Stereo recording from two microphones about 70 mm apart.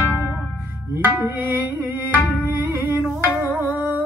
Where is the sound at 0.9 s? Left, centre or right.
Right.